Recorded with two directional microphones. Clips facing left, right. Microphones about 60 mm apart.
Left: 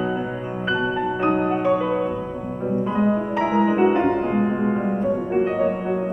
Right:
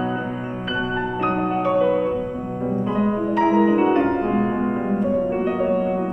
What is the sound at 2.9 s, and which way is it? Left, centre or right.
Music, centre.